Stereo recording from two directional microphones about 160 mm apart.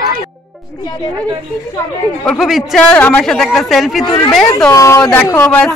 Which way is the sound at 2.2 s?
Centre (ahead or behind).